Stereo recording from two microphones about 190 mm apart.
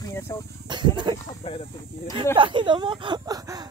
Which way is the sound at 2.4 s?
25° right (ahead or behind).